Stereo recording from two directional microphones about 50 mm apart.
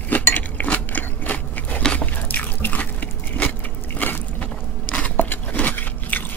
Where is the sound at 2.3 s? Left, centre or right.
Left.